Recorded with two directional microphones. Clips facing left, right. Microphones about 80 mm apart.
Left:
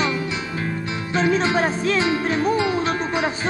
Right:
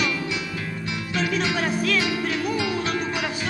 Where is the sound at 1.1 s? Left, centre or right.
Left.